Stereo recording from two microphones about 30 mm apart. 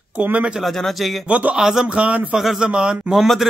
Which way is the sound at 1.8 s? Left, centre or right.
Right.